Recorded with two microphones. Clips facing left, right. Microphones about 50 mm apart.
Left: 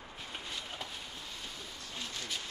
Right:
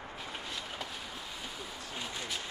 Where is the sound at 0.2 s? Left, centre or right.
Centre.